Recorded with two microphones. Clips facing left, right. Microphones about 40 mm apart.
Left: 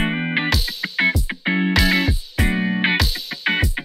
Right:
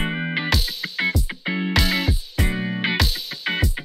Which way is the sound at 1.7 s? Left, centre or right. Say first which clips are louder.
Left 4 dB; centre.